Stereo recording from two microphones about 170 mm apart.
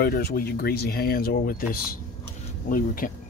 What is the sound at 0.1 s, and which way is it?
Speech, 65° left (ahead or behind).